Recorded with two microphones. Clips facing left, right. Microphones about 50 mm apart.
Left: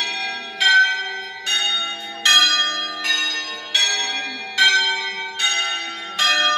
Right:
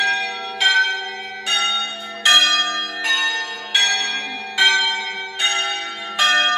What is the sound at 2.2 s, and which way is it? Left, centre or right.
Church bell, centre.